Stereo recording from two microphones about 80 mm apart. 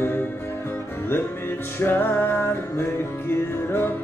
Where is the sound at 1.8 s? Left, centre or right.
Left.